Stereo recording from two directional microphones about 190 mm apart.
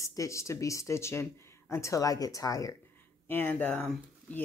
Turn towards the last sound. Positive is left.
turn(degrees=10)  # may be behind; listen again after turning